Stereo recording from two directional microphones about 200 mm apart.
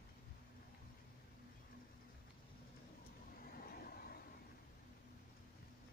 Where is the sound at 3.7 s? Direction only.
50° left (ahead or behind).